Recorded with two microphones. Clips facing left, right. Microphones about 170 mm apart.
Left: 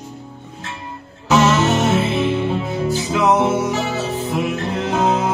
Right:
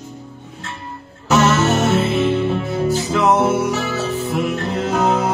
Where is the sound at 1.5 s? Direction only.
45° right (ahead or behind).